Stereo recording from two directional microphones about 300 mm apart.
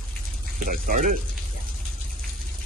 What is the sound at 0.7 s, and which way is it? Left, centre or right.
Speech, right.